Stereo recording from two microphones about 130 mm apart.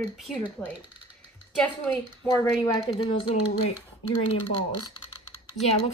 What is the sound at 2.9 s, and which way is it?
Speech, 45° left (ahead or behind).